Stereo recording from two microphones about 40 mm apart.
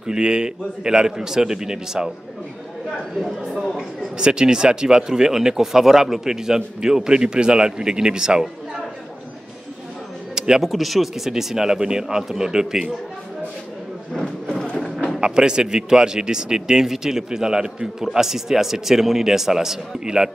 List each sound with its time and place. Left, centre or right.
0.0 s speech: right
3.2 s speech: centre
4.2 s speech: right
10.3 s a sound: centre
10.6 s speech: centre
14.1 s a sound: centre
15.1 s speech: right